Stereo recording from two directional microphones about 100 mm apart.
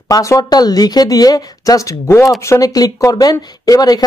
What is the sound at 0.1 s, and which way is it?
Speech, 35° left (ahead or behind).